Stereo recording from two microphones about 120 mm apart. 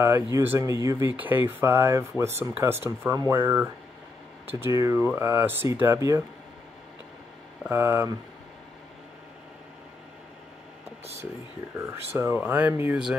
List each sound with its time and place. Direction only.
0.3 s speech: 20° right (ahead or behind)
1.1 s speech: 15° right (ahead or behind)
7.6 s speech: 20° right (ahead or behind)
11.7 s speech: 20° right (ahead or behind)